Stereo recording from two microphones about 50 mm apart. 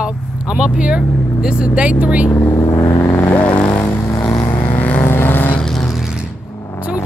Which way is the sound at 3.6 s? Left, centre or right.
Left.